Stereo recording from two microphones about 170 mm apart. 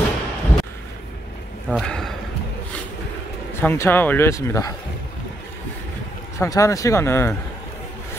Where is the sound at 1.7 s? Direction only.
5° left (ahead or behind).